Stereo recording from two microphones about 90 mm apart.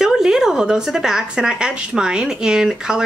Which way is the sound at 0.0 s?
5° right (ahead or behind).